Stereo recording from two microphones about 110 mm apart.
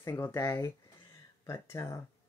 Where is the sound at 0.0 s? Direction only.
25° left (ahead or behind).